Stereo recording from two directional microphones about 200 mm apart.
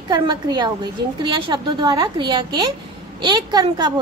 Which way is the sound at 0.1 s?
20° right (ahead or behind).